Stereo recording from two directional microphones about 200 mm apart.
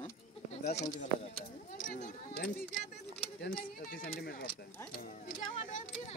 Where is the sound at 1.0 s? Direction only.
35° left (ahead or behind).